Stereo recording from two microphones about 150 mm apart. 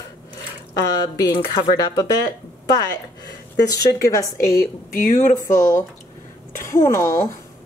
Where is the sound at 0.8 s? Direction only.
25° left (ahead or behind).